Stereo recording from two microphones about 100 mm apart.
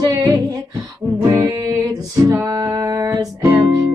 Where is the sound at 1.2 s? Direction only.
35° right (ahead or behind).